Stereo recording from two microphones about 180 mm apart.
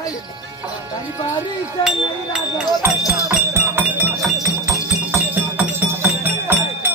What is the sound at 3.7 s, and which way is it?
Music, 10° right (ahead or behind).